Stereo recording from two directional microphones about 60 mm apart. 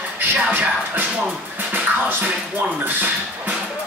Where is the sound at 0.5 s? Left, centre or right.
Right.